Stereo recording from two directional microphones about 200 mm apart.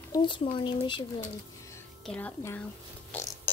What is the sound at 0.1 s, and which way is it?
Speech, 25° left (ahead or behind).